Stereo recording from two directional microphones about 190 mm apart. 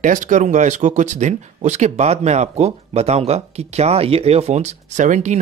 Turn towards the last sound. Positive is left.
turn(degrees=-40)  # may be behind; listen again after turning